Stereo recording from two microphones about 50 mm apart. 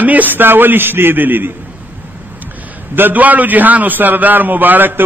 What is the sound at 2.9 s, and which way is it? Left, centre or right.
A man's voice, right.